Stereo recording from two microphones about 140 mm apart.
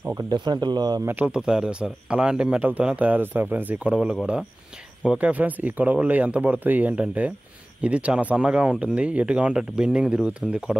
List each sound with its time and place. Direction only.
0.0 s speech: 20° right (ahead or behind)
0.3 s speech: 30° right (ahead or behind)
1.0 s speech: 10° right (ahead or behind)